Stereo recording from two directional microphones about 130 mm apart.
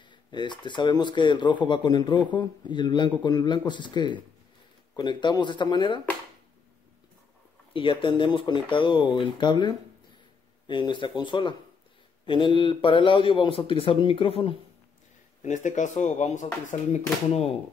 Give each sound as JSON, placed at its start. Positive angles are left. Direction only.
{"t": 0.0, "sound": "speech", "side_deg": 35}
{"t": 7.7, "sound": "speech", "side_deg": 40}
{"t": 15.4, "sound": "speech", "side_deg": 70}
{"t": 16.9, "sound": "speech", "side_deg": 55}